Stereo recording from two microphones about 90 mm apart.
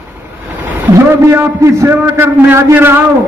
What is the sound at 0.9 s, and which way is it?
A man's voice, 30° right (ahead or behind).